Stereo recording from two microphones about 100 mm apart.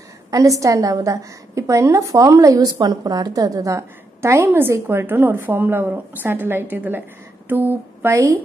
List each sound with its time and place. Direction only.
0.3 s a woman's voice: 35° right (ahead or behind)